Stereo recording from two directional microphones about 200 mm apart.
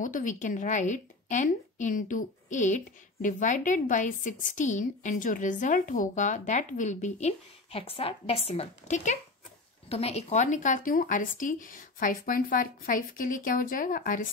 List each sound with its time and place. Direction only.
0.0 s a woman's voice: 40° left (ahead or behind)